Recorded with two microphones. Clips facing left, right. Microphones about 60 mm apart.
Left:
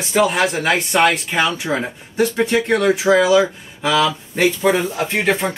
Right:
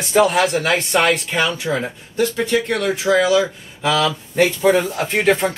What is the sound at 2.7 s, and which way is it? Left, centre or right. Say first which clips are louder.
Speech: left 4 dB; centre.